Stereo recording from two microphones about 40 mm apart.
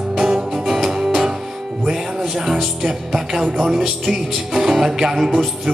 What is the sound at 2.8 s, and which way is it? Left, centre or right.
Music, centre.